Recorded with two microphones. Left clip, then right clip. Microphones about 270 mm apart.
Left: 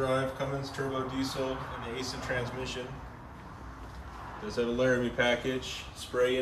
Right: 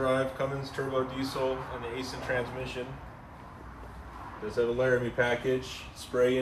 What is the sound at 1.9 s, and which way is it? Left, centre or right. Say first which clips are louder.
Speech: right 2 dB; centre.